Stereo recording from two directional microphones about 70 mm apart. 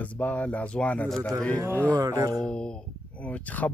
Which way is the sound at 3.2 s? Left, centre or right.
Left.